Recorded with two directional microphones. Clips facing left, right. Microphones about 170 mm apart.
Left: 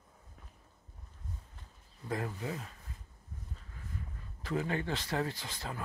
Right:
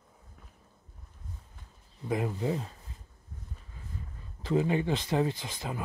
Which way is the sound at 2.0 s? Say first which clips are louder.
Right 7 dB; 20° right (ahead or behind).